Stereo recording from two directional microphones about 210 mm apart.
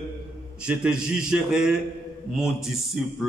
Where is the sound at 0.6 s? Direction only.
5° right (ahead or behind).